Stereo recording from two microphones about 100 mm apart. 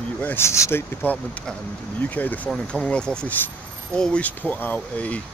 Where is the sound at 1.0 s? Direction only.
15° left (ahead or behind).